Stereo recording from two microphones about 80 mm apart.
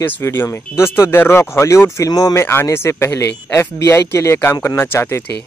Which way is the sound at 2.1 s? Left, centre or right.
Left.